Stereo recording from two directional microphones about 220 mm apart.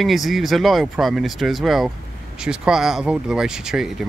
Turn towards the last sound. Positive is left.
turn(degrees=0)  # may be behind; listen again after turning